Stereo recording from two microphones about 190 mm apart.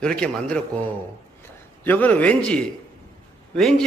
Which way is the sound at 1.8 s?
10° left (ahead or behind).